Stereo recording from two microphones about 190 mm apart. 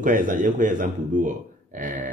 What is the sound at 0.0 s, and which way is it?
Speech, 45° right (ahead or behind).